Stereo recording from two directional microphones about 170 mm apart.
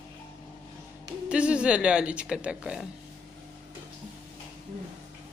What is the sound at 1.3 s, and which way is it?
A woman's voice, 5° right (ahead or behind).